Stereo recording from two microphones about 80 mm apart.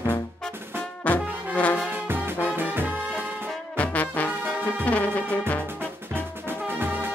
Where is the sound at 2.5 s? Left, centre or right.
Right.